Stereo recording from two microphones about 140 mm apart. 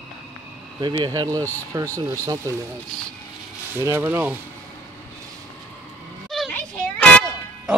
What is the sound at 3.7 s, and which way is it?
Speech, 15° right (ahead or behind).